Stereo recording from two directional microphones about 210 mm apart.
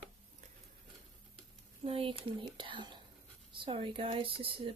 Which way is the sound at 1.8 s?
25° right (ahead or behind).